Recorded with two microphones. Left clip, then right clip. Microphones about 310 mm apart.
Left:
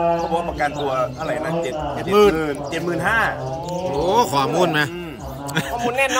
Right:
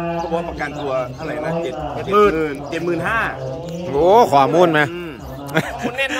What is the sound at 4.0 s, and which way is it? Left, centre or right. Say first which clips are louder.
Speech: right 7 dB; centre.